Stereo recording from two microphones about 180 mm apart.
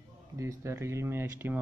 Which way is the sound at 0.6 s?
15° right (ahead or behind).